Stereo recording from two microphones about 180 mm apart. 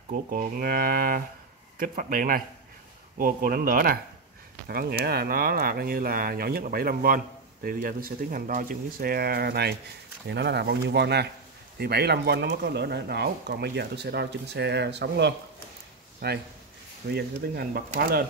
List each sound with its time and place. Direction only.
0.1 s speech: 50° right (ahead or behind); by 15.3 s 70° right (ahead or behind)
17.1 s speech: 60° right (ahead or behind)